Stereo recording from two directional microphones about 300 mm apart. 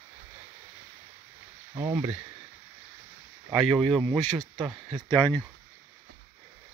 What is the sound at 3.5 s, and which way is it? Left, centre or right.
Speech, centre.